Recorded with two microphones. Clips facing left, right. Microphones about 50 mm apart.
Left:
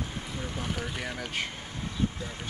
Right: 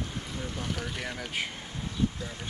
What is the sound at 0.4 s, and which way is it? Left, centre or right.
Speech, centre.